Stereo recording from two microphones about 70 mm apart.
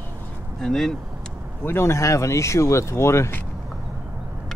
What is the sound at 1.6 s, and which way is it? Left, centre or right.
Speech, left.